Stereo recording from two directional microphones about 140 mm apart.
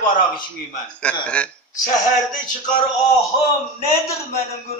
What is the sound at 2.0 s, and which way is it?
Speech, 70° left (ahead or behind).